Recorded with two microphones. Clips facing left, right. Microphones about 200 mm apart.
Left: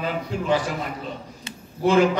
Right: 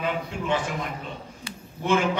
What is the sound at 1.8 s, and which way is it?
Speech, 35° left (ahead or behind).